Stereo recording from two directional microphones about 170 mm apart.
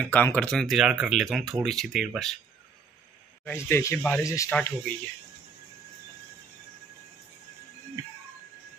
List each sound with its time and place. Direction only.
0.0 s speech: 10° left (ahead or behind)
3.4 s speech: 15° left (ahead or behind)
4.5 s speech: 5° left (ahead or behind)